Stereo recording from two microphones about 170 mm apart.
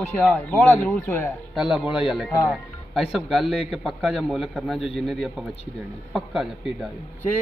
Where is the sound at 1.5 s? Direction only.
5° right (ahead or behind).